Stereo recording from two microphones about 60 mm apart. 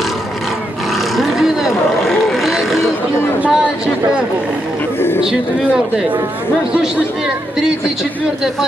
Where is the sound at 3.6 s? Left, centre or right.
Right.